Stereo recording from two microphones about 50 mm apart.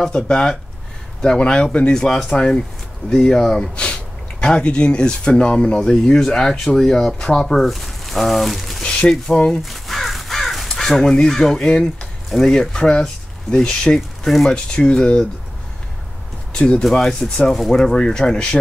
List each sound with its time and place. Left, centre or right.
0.0 s speech: centre
8.8 s a sound: centre
9.6 s crow: centre
12.3 s speech: centre
14.7 s speech: centre
16.5 s speech: left
16.9 s speech: centre